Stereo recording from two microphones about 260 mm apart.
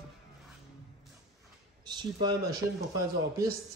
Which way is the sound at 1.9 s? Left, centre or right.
Centre.